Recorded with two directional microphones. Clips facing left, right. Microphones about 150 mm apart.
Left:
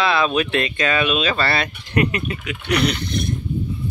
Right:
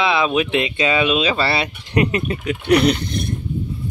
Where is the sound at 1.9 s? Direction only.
25° right (ahead or behind).